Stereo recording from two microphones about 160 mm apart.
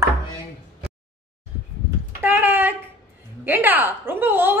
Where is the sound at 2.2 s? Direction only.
15° right (ahead or behind).